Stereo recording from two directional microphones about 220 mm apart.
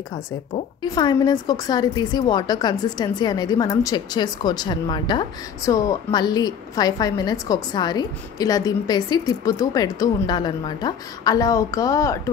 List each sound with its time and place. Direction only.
0.1 s a woman's voice: 30° left (ahead or behind)
0.8 s a woman's voice: 20° left (ahead or behind)